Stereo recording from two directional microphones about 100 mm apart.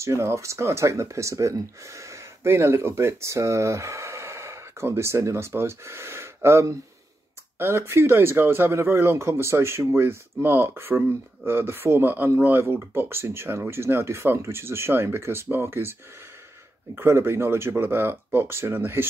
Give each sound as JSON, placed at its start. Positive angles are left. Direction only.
{"t": 0.0, "sound": "speech", "side_deg": -30}
{"t": 16.9, "sound": "speech", "side_deg": -25}